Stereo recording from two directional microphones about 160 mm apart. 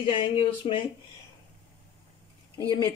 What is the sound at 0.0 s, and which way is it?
Speech, 30° left (ahead or behind).